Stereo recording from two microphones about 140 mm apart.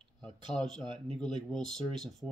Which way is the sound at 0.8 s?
35° right (ahead or behind).